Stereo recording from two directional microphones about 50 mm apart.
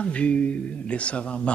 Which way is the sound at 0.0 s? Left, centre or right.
Left.